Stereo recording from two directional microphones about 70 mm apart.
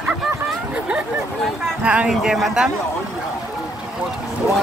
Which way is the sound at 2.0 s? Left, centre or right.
Centre.